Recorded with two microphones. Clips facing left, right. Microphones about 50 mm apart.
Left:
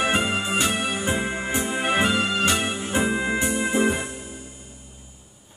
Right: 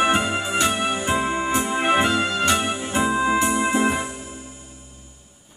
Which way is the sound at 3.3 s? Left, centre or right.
Right.